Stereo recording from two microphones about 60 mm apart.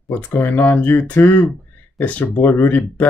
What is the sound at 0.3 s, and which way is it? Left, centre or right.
Speech, left.